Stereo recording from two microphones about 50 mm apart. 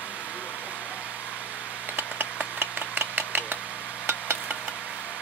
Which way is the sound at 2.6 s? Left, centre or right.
Right.